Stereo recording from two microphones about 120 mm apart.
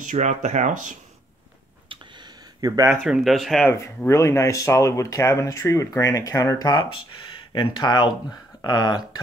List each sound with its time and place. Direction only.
0.0 s speech: 90° right
1.9 s a sound: 35° right (ahead or behind)
3.0 s speech: 5° right (ahead or behind)
4.1 s speech: 25° left (ahead or behind)